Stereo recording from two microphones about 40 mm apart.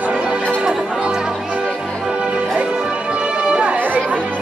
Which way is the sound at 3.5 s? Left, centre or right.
Right.